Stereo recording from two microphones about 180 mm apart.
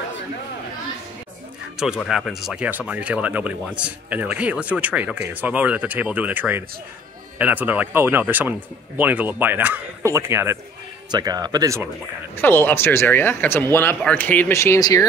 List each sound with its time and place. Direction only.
2.0 s speech: centre (ahead or behind); by 11.9 s 15° right (ahead or behind)
12.4 s speech: 10° left (ahead or behind)